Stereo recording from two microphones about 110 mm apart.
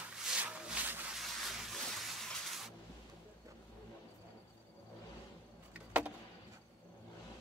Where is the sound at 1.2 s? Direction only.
Centre (ahead or behind).